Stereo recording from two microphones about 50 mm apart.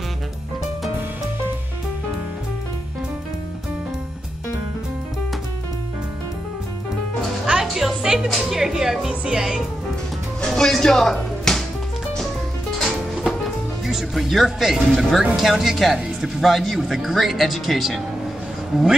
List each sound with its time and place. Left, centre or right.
7.6 s music: centre
8.4 s a woman's voice: centre
10.4 s music: centre
12.7 s music: centre
13.8 s speech: centre